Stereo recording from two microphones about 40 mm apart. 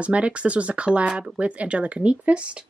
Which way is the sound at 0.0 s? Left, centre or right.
Right.